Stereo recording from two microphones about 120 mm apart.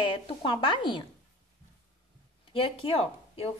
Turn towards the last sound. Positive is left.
turn(degrees=55)  # may be behind; listen again after turning